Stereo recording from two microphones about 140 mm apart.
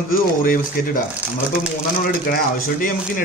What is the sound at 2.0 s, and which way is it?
Speech, 80° left.